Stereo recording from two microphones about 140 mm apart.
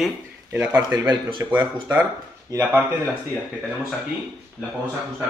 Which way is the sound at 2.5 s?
15° right (ahead or behind).